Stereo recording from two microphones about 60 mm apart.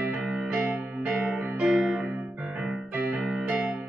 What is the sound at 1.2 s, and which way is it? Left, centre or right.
Music, right.